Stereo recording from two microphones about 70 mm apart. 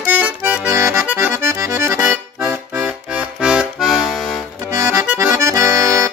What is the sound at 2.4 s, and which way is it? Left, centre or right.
Music, right.